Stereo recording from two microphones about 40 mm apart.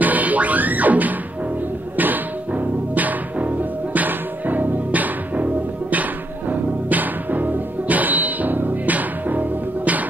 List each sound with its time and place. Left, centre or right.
0.0 s music: right